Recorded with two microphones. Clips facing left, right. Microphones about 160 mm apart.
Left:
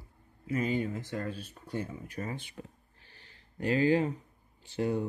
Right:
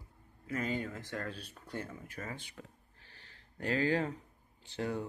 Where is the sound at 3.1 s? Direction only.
15° left (ahead or behind).